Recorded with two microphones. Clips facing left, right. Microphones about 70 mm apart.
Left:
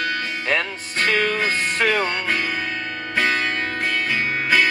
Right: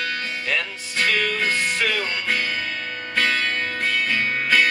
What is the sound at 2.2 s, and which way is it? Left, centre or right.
Music, centre.